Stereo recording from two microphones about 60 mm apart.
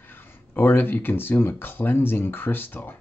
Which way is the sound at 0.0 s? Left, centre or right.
Left.